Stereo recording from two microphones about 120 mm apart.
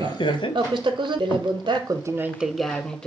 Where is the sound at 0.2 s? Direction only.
40° left (ahead or behind).